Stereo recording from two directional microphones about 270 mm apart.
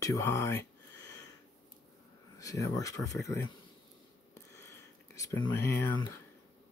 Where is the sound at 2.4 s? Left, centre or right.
Centre.